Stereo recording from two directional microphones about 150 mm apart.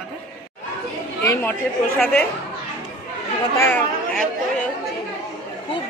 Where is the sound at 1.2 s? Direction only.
15° left (ahead or behind).